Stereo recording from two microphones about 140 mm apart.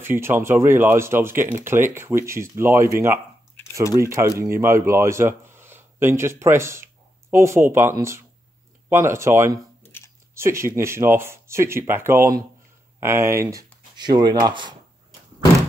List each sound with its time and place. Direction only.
0.0 s speech: 15° right (ahead or behind)
9.8 s a sound: 15° left (ahead or behind)
10.3 s speech: 20° right (ahead or behind)